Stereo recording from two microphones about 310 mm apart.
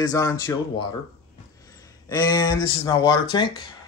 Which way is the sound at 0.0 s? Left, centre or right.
Centre.